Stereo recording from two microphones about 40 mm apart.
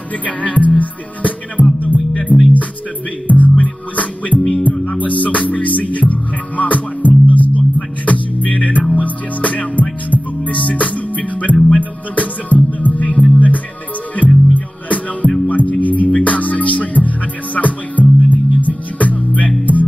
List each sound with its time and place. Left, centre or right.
0.2 s music: left
3.3 s music: left